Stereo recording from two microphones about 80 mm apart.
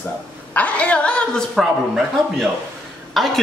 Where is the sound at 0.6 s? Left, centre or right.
Centre.